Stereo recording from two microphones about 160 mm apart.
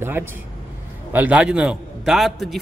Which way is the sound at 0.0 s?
15° right (ahead or behind).